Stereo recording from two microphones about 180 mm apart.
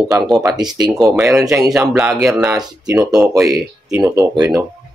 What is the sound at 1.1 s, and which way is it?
Speech, 5° right (ahead or behind).